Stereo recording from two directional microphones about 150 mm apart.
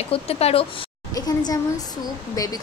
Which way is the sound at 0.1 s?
40° left (ahead or behind).